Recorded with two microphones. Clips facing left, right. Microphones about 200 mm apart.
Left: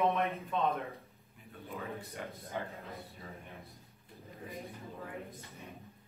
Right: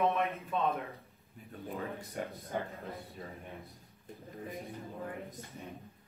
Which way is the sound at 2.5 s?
50° right (ahead or behind).